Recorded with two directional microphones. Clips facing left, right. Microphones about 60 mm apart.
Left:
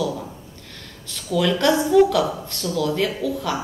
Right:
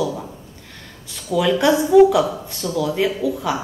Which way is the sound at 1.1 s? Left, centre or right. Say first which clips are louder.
Right 2 dB; centre.